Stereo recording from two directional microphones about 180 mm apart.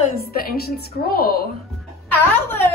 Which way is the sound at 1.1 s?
55° left (ahead or behind).